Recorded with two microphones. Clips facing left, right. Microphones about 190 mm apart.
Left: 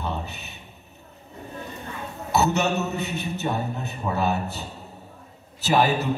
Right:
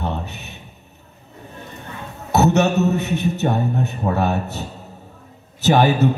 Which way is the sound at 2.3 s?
70° right (ahead or behind).